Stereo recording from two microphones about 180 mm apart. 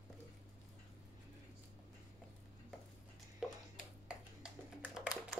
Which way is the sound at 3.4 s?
5° right (ahead or behind).